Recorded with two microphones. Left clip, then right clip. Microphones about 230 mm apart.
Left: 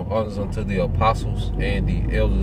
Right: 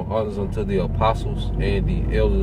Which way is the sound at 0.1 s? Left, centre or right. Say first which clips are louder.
Even; centre.